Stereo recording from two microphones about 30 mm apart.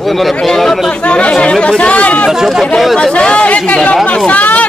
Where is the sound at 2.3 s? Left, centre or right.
Centre.